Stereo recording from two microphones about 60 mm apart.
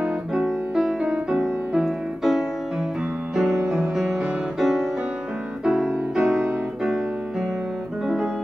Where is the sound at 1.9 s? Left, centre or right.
Centre.